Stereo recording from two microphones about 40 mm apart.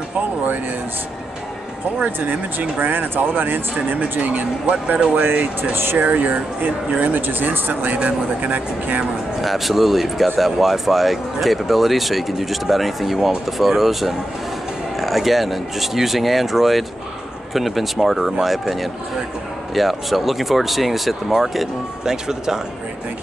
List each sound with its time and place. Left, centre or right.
2.0 s speech: right
4.2 s speech: right
5.6 s speech: right
5.9 s speech: right
9.4 s speech: centre